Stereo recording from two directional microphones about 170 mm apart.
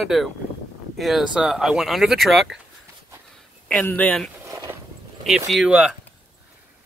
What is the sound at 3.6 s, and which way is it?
Speech, 10° left (ahead or behind).